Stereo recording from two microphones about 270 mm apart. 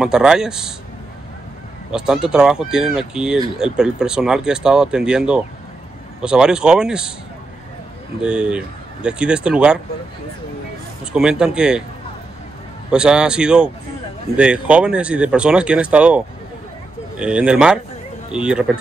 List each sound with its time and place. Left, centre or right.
0.0 s speech: centre
1.9 s speech: centre
8.2 s speech: centre
11.1 s speech: centre
12.9 s speech: centre
17.2 s speech: centre